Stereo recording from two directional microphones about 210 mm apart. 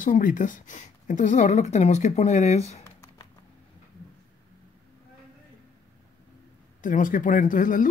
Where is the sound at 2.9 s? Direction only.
15° left (ahead or behind).